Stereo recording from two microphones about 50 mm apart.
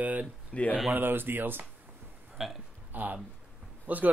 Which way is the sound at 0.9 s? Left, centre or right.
Right.